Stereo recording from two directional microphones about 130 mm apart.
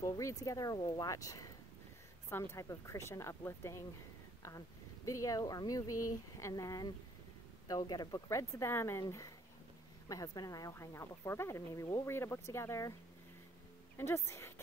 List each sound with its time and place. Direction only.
0.2 s speech: 25° left (ahead or behind)
13.9 s speech: 20° left (ahead or behind)